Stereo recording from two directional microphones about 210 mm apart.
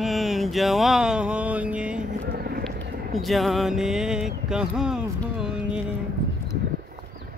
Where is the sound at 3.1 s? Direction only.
Centre (ahead or behind).